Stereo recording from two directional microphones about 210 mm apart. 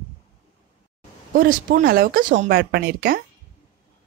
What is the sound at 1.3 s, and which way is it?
A woman's voice, 40° right (ahead or behind).